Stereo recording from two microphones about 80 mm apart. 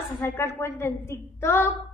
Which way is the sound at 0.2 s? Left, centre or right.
Left.